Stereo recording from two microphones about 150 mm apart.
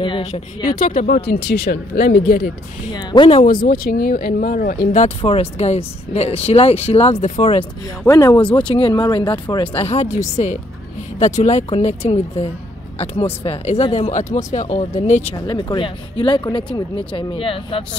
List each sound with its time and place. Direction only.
0.7 s speech: 60° left (ahead or behind); by 2.5 s 80° left
2.9 s speech: 30° left (ahead or behind)
3.4 s speech: 70° left (ahead or behind)
5.0 s speech: 40° left (ahead or behind)
8.0 s speech: 20° left (ahead or behind)
8.5 s speech: 35° left (ahead or behind); by 15.3 s 50° left (ahead or behind)
15.3 s speech: 30° left (ahead or behind)